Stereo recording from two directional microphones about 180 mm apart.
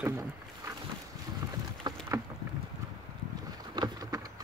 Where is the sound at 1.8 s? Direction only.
25° right (ahead or behind).